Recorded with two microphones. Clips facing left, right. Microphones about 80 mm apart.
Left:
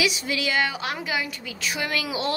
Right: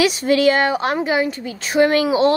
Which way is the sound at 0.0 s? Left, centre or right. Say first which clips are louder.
Right 11 dB; right.